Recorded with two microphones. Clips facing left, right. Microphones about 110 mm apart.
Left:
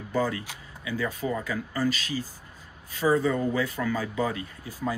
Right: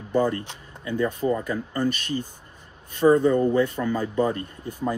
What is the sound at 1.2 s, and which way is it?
Speech, 15° right (ahead or behind).